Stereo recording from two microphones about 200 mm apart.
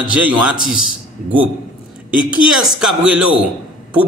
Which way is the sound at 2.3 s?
5° right (ahead or behind).